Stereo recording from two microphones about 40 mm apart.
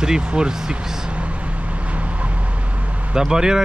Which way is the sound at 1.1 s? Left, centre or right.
Right.